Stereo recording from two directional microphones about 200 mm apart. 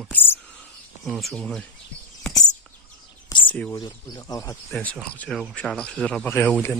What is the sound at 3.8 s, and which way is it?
Speech, 20° left (ahead or behind).